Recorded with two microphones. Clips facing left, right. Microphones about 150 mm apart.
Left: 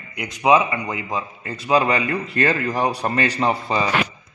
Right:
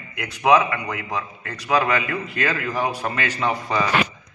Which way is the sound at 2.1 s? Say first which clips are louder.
Left 4 dB; 40° left (ahead or behind).